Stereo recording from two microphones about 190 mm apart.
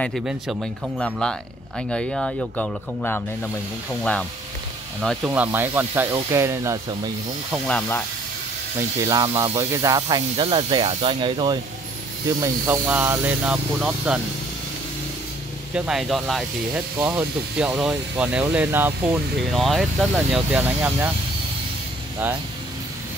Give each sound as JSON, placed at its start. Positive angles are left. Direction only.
{"t": 0.0, "sound": "speech", "side_deg": 0}
{"t": 5.0, "sound": "speech", "side_deg": -5}
{"t": 7.6, "sound": "speech", "side_deg": 5}
{"t": 8.7, "sound": "speech", "side_deg": -20}
{"t": 12.4, "sound": "speech", "side_deg": -15}
{"t": 15.7, "sound": "speech", "side_deg": -5}
{"t": 19.5, "sound": "speech", "side_deg": 0}